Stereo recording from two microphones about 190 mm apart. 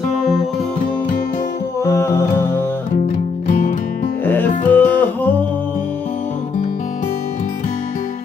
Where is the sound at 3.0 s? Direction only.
40° left (ahead or behind).